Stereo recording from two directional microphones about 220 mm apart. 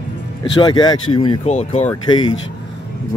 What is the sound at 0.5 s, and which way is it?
Speech, 20° left (ahead or behind).